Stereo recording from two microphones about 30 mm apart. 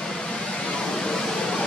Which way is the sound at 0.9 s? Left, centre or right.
Left.